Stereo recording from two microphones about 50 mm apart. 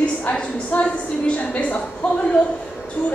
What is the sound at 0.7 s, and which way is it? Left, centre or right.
A woman's voice, left.